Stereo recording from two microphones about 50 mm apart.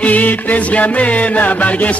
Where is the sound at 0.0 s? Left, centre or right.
Left.